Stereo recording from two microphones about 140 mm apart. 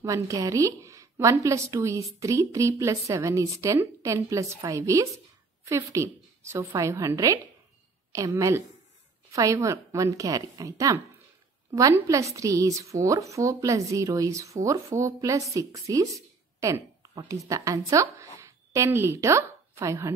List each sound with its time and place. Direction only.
0.0 s a woman's voice: 25° right (ahead or behind)
16.6 s a sound: 25° right (ahead or behind)
17.2 s a woman's voice: 25° right (ahead or behind)